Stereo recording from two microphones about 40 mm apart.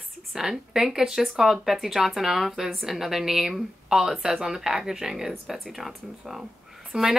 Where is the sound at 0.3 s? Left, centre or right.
Centre.